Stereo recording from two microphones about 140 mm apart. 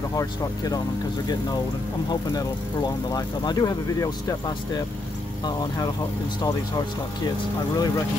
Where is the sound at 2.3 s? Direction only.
25° left (ahead or behind).